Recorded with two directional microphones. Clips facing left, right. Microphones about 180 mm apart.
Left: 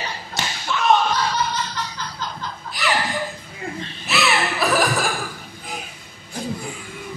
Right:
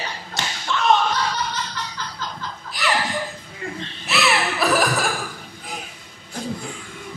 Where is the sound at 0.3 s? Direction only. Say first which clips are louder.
Even; centre (ahead or behind).